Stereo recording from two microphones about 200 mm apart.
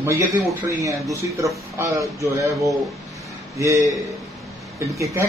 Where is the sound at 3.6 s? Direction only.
15° right (ahead or behind).